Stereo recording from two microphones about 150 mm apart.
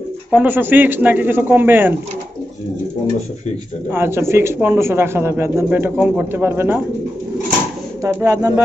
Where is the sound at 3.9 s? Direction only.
15° right (ahead or behind).